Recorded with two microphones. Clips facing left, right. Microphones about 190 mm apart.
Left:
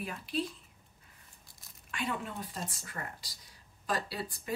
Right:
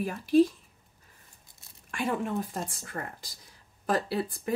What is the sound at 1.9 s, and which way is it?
Speech, 50° right (ahead or behind).